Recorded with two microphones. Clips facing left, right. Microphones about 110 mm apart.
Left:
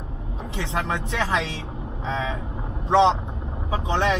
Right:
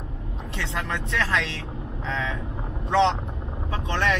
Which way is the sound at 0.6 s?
15° left (ahead or behind).